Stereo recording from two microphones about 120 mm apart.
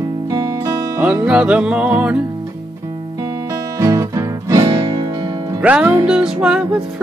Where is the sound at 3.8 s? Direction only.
25° right (ahead or behind).